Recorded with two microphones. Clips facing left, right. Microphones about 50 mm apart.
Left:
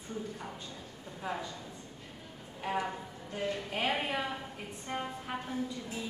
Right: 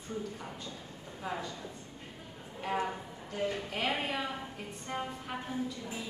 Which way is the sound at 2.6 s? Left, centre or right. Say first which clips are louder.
Right 1 dB; centre.